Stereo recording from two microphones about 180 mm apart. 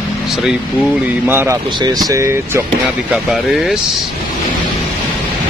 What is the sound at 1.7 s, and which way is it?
Speech, 25° right (ahead or behind).